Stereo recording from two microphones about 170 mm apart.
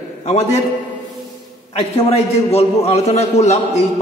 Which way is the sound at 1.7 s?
35° left (ahead or behind).